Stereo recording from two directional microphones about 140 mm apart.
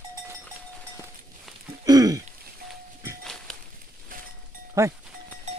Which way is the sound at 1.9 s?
25° right (ahead or behind).